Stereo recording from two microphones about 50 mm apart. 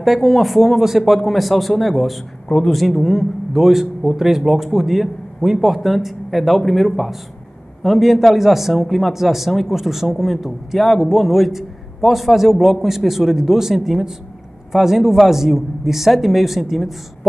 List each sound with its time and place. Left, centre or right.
0.0 s a man's voice: centre
2.4 s speech: centre
2.7 s a man's voice: centre